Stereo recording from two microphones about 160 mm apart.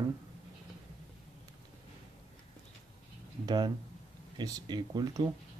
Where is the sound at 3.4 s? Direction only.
30° right (ahead or behind).